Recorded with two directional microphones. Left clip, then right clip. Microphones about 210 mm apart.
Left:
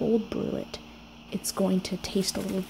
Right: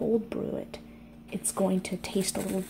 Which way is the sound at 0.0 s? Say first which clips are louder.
Left 2 dB; 15° left (ahead or behind).